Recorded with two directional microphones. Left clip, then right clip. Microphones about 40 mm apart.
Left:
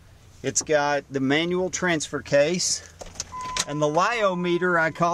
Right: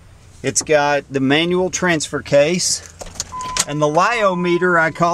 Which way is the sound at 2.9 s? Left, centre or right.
Left.